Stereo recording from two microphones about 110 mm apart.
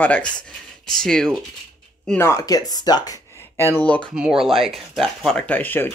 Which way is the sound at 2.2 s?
25° left (ahead or behind).